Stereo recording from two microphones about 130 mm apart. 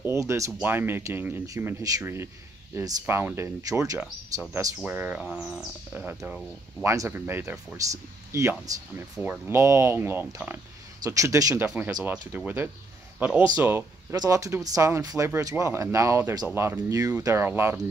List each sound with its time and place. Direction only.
0.0 s a sound: 20° right (ahead or behind)
0.5 s speech: 15° right (ahead or behind)
4.6 s speech: 15° right (ahead or behind)
5.2 s a sound: centre (ahead or behind)
5.9 s speech: 15° right (ahead or behind)
11.6 s speech: 10° right (ahead or behind)
14.1 s speech: 30° right (ahead or behind)